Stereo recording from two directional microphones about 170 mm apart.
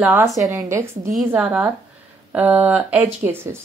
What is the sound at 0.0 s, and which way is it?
Speech, 10° right (ahead or behind).